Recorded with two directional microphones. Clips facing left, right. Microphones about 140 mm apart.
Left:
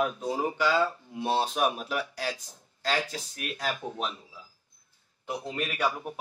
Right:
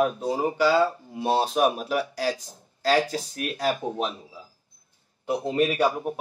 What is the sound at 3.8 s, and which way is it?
Speech, 25° right (ahead or behind).